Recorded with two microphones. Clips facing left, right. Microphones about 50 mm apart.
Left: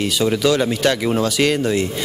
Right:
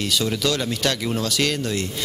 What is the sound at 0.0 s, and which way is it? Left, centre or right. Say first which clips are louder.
Speech: left 5 dB; centre.